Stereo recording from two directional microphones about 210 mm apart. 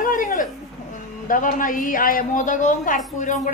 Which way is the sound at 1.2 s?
40° left (ahead or behind).